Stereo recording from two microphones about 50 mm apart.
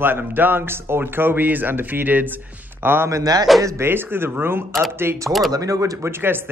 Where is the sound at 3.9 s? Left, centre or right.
Right.